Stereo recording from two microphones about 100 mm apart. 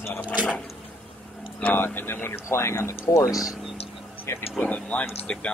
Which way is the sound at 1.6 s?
20° left (ahead or behind).